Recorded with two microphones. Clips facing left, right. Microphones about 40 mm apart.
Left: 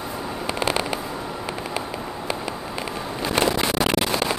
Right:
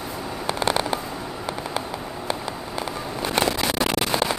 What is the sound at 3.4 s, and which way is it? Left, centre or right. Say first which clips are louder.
Vehicle: left 2 dB; centre.